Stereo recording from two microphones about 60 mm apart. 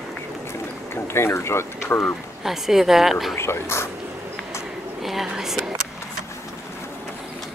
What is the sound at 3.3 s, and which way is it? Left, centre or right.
Speech, left.